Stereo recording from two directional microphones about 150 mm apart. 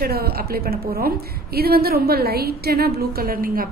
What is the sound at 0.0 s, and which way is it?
A woman's voice, 90° right.